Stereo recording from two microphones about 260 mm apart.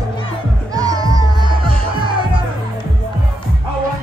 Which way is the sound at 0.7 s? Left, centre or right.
Centre.